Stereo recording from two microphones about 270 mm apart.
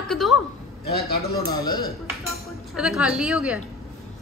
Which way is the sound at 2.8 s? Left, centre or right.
Centre.